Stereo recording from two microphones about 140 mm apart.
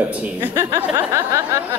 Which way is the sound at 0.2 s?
15° right (ahead or behind).